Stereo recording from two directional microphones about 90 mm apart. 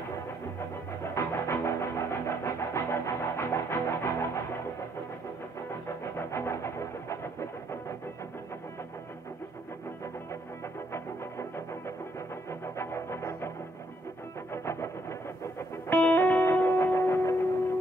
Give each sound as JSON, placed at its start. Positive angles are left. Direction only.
{"t": 1.1, "sound": "music", "side_deg": 30}
{"t": 6.1, "sound": "music", "side_deg": 30}
{"t": 10.9, "sound": "music", "side_deg": 30}
{"t": 12.6, "sound": "music", "side_deg": 30}
{"t": 14.5, "sound": "music", "side_deg": 30}
{"t": 15.9, "sound": "music", "side_deg": 20}